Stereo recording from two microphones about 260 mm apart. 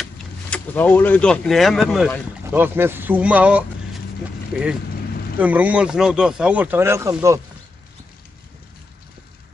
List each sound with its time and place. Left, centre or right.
0.0 s speech: centre
5.4 s speech: centre